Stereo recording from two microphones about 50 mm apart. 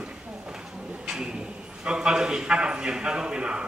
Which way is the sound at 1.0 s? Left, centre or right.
Centre.